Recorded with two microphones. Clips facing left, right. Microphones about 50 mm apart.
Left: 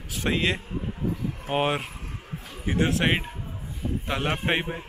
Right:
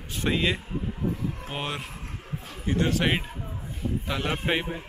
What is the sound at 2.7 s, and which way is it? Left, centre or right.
A man's voice, centre.